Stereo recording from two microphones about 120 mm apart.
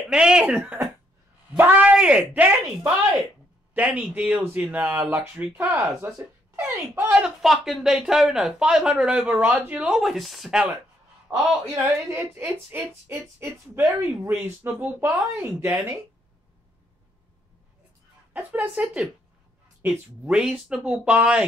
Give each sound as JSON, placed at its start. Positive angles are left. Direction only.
{"t": 0.1, "sound": "speech", "side_deg": -5}
{"t": 7.1, "sound": "speech", "side_deg": -5}
{"t": 11.2, "sound": "speech", "side_deg": -20}
{"t": 18.3, "sound": "speech", "side_deg": -15}